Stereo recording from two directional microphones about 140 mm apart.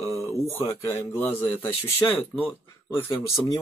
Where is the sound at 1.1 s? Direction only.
15° left (ahead or behind).